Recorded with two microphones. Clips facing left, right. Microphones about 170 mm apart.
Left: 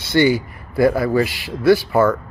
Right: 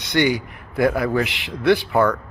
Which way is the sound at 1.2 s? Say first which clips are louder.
Left 2 dB; 20° right (ahead or behind).